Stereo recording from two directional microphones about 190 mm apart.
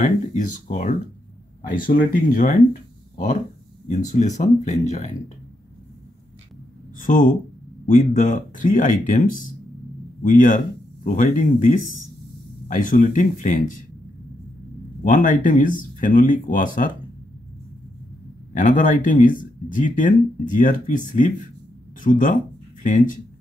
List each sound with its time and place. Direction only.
0.0 s speech: 40° left (ahead or behind)
7.0 s speech: 45° left (ahead or behind)
15.0 s speech: 45° left (ahead or behind)
18.5 s speech: 45° left (ahead or behind)